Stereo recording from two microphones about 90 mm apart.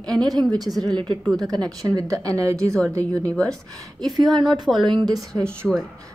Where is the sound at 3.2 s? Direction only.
10° left (ahead or behind).